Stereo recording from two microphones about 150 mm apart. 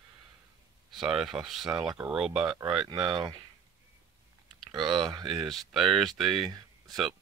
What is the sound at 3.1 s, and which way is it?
Speech, 30° right (ahead or behind).